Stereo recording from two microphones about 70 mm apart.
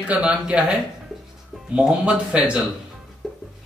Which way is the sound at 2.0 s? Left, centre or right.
Centre.